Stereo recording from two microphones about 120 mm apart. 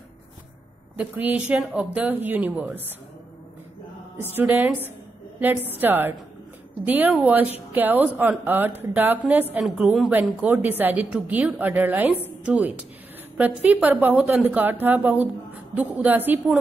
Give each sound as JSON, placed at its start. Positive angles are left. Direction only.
{"t": 0.9, "sound": "a woman's voice", "side_deg": -15}
{"t": 4.3, "sound": "a woman's voice", "side_deg": -15}